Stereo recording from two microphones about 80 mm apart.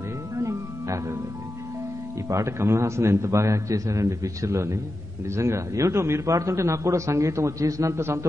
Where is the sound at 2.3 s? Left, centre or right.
Right.